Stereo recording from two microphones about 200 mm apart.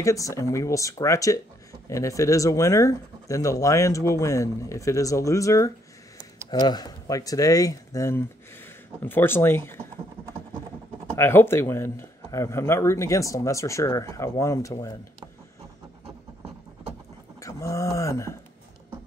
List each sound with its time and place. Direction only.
0.0 s speech: 15° left (ahead or behind)
11.1 s speech: 10° left (ahead or behind)
17.4 s speech: 15° left (ahead or behind)